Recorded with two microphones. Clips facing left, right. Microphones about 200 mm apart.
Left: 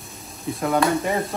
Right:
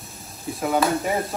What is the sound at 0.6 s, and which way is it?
Speech, 5° right (ahead or behind).